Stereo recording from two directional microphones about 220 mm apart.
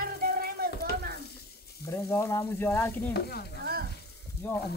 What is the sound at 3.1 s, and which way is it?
Stir, 45° left (ahead or behind).